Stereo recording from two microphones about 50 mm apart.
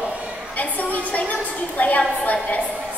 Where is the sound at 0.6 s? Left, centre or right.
Left.